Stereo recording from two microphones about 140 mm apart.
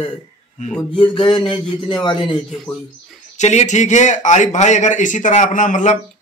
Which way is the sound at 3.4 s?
55° left (ahead or behind).